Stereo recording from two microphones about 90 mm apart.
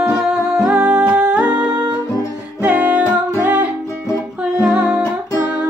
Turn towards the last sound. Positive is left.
turn(degrees=-10)  # may be behind; listen again after turning